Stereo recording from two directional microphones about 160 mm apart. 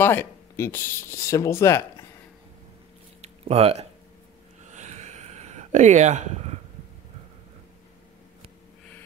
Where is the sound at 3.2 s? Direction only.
40° right (ahead or behind).